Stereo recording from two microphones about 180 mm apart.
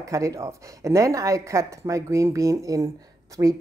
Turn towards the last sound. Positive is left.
turn(degrees=-20)  # may be behind; listen again after turning